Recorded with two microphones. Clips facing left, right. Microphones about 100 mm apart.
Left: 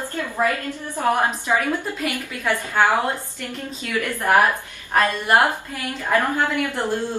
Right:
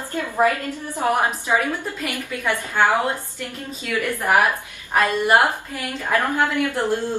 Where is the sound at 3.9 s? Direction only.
15° right (ahead or behind).